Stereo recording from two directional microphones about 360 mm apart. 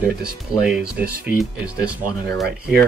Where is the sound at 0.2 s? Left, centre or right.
Centre.